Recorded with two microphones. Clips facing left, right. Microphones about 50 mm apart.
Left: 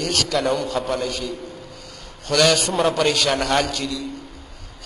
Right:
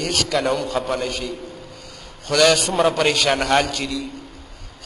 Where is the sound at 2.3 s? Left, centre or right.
Centre.